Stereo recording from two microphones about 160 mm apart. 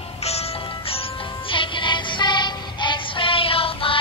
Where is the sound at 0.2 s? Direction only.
40° left (ahead or behind).